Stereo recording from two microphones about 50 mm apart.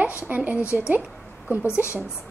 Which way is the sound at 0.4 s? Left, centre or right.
Right.